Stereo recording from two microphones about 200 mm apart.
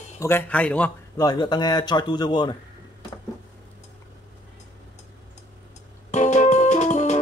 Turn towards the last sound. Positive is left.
turn(degrees=35)  # may be behind; listen again after turning